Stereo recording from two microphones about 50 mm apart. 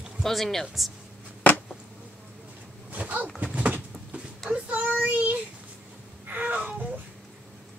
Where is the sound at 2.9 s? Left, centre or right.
Right.